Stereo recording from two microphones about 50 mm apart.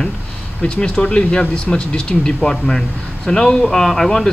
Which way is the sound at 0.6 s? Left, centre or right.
Left.